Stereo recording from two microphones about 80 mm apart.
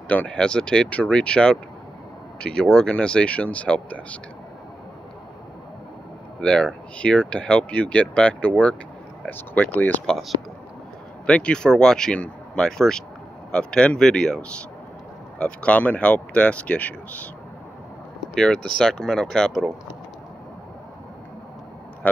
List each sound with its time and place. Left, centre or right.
0.1 s speech: centre
6.4 s speech: centre
10.0 s speech: centre
11.2 s speech: centre
18.3 s speech: centre
22.0 s speech: centre